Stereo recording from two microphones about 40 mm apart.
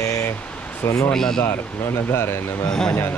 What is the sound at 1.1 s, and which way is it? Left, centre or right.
Speech, centre.